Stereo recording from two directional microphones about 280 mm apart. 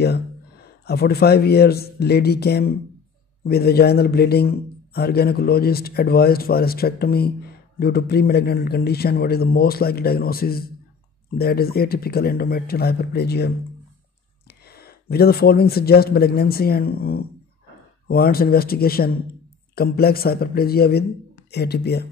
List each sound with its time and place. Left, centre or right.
0.0 s a man's voice: left
14.5 s a man's voice: left